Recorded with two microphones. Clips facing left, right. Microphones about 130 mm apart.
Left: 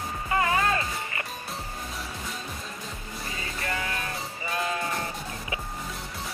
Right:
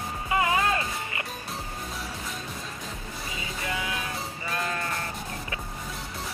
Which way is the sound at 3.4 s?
5° right (ahead or behind).